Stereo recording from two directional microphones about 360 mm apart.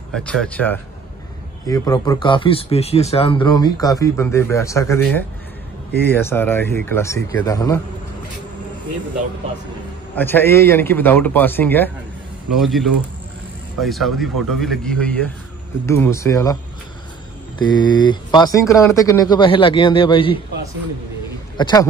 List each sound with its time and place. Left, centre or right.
0.1 s a man's voice: centre
10.1 s a man's voice: centre
17.6 s speech: centre
21.5 s a man's voice: centre